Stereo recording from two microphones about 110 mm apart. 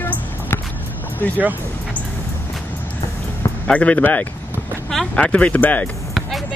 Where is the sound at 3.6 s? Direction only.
10° left (ahead or behind).